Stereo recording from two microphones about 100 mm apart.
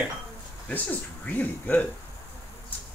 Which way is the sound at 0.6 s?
15° left (ahead or behind).